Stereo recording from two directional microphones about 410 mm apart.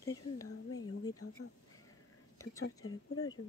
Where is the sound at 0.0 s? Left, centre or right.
Centre.